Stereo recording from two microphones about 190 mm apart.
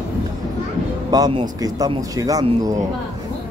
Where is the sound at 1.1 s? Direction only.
20° right (ahead or behind).